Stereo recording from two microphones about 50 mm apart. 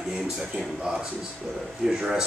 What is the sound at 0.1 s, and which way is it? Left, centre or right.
Speech, centre.